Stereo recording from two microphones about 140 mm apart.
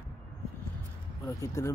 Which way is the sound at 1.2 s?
20° left (ahead or behind).